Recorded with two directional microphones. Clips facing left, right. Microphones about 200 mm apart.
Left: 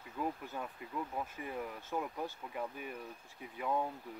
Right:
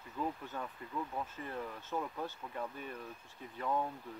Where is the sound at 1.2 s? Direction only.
10° left (ahead or behind).